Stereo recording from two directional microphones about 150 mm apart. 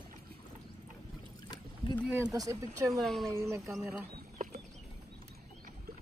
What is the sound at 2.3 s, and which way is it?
Speech, 25° right (ahead or behind).